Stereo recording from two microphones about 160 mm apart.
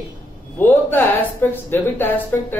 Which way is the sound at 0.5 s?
10° left (ahead or behind).